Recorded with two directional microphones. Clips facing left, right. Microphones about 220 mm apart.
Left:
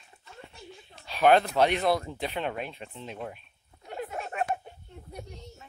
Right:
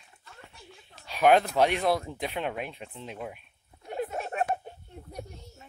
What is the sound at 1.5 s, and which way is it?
Speech, 10° right (ahead or behind).